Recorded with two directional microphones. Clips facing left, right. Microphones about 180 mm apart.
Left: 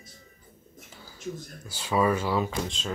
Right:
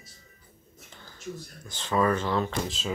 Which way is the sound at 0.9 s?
10° left (ahead or behind).